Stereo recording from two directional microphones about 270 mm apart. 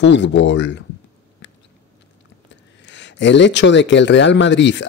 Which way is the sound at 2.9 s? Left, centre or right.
Left.